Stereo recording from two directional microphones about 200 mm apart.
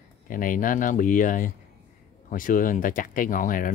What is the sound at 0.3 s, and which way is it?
Speech, 45° left (ahead or behind).